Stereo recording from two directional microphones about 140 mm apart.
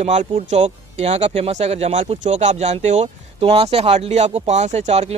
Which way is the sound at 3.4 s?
45° right (ahead or behind).